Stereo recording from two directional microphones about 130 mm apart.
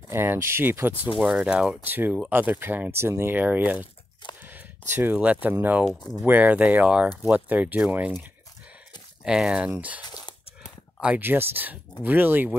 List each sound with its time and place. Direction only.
0.1 s speech: 15° right (ahead or behind)
9.2 s speech: 5° right (ahead or behind)
10.0 s crumpling: 30° left (ahead or behind)
11.0 s speech: 10° right (ahead or behind)